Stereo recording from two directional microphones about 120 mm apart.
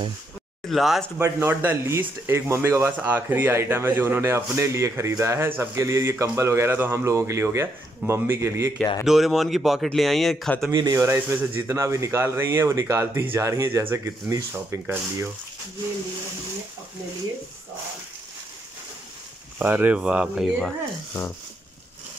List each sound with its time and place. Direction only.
0.7 s speech: centre (ahead or behind)
1.2 s speech: 20° right (ahead or behind)
9.0 s speech: centre (ahead or behind)
10.7 s speech: 30° right (ahead or behind)
19.6 s speech: 15° right (ahead or behind)